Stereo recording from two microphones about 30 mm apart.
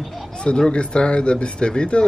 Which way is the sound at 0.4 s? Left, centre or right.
Left.